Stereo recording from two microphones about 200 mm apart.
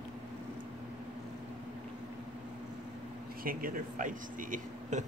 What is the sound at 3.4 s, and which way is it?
Speech, 45° right (ahead or behind).